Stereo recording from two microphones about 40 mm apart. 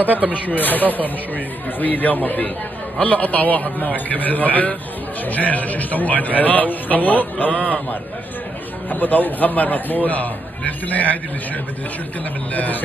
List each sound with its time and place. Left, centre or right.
0.3 s a man's voice: left
8.9 s a man's voice: left
12.5 s a man's voice: left